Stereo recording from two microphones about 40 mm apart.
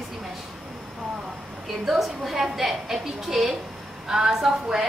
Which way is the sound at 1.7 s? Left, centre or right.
Centre.